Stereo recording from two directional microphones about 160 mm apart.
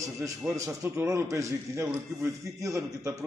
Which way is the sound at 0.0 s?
20° right (ahead or behind).